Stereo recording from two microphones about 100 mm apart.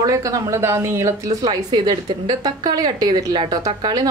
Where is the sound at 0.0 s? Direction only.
35° right (ahead or behind).